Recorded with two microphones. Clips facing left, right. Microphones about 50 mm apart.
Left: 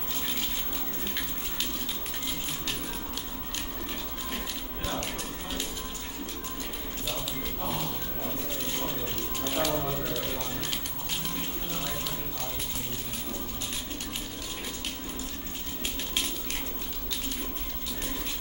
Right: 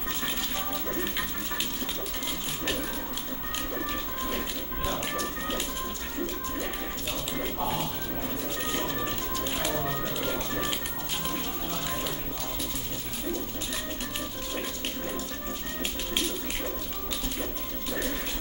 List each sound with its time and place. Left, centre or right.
9.5 s music: centre